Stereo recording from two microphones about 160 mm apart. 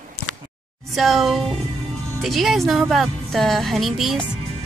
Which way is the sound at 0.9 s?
Centre (ahead or behind).